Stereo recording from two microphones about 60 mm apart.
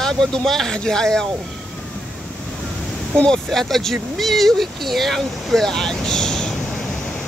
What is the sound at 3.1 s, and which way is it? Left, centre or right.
Speech, centre.